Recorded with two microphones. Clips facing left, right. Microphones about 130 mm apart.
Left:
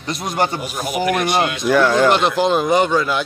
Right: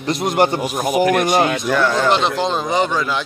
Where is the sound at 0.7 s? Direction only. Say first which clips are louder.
Right 4 dB; 45° right (ahead or behind).